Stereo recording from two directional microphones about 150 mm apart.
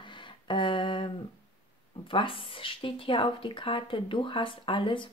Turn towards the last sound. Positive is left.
turn(degrees=35)  # may be behind; listen again after turning